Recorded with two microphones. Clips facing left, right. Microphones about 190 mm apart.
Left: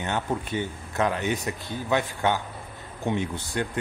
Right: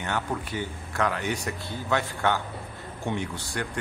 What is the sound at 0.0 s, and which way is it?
A man's voice, 20° left (ahead or behind).